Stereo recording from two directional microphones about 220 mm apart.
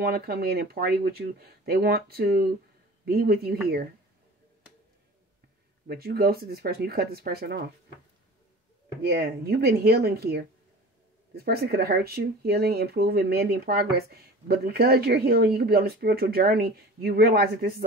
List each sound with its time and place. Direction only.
0.0 s speech: 45° right (ahead or behind)
5.9 s speech: 45° right (ahead or behind)
9.0 s speech: 45° right (ahead or behind)